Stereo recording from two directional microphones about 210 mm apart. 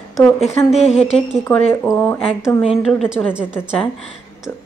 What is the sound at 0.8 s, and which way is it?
Speech, 30° left (ahead or behind).